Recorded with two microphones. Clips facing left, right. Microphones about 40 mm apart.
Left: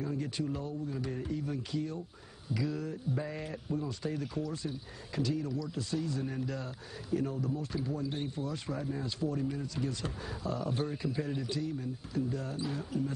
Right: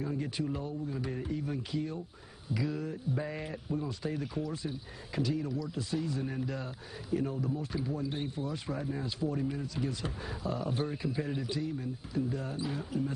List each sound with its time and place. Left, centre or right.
0.0 s speech: centre